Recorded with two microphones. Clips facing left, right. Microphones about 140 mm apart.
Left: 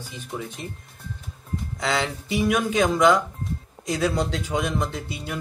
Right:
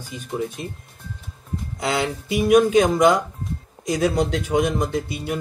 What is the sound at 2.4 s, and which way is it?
Speech, 45° right (ahead or behind).